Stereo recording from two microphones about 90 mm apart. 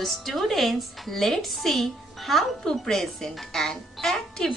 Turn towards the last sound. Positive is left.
turn(degrees=5)  # may be behind; listen again after turning